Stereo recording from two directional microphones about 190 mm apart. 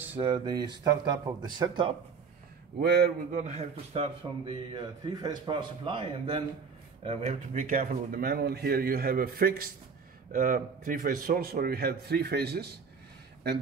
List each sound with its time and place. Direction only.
0.2 s a man's voice: 20° right (ahead or behind)
2.8 s speech: 60° right (ahead or behind)
3.3 s a man's voice: 35° right (ahead or behind); by 12.7 s 55° right (ahead or behind)